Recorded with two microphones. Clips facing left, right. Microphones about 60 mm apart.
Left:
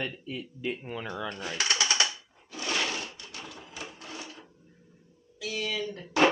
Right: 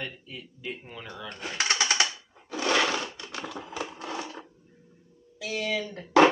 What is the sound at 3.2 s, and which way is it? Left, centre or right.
Typewriter, right.